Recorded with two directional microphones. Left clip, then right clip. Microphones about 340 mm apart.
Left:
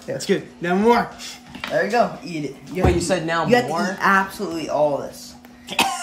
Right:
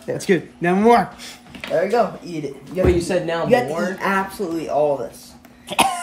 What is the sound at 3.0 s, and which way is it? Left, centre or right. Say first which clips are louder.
Speech: even; centre.